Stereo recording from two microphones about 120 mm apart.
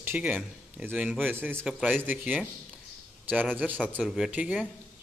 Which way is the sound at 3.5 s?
15° right (ahead or behind).